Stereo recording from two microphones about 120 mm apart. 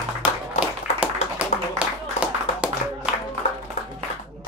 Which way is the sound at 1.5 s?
70° left (ahead or behind).